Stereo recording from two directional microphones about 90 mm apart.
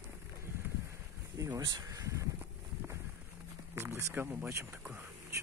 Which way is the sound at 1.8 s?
35° right (ahead or behind).